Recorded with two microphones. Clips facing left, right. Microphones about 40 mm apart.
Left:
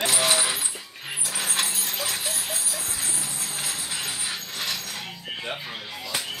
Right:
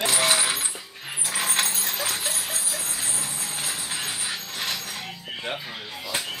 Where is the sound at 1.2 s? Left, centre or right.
Right.